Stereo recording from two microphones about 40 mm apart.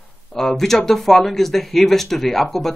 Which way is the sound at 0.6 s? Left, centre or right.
Centre.